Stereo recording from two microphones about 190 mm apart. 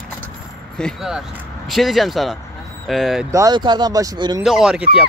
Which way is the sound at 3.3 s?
20° right (ahead or behind).